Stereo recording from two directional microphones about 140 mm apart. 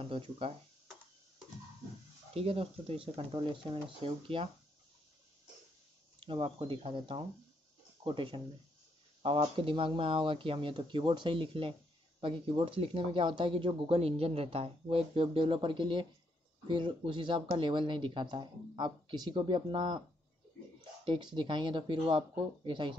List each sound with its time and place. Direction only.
2.3 s speech: 45° right (ahead or behind)
6.1 s speech: 40° right (ahead or behind)
21.0 s speech: 35° right (ahead or behind)